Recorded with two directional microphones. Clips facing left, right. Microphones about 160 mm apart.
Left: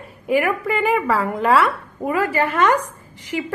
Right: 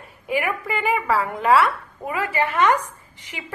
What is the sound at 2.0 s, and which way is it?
Speech, 40° left (ahead or behind).